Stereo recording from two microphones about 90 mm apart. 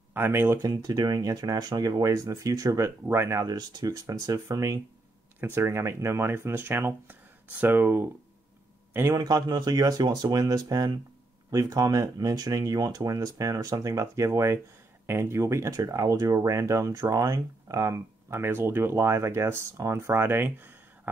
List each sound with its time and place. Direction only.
0.1 s speech: 25° right (ahead or behind)
0.6 s speech: 50° right (ahead or behind); by 3.4 s 30° right (ahead or behind)
3.4 s speech: 45° right (ahead or behind)
5.4 s speech: 30° right (ahead or behind)
9.1 s speech: 45° right (ahead or behind); by 21.1 s 25° right (ahead or behind)